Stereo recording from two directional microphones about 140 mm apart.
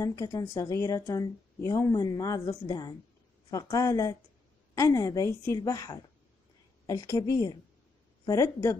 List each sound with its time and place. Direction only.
0.0 s a woman's voice: 25° left (ahead or behind)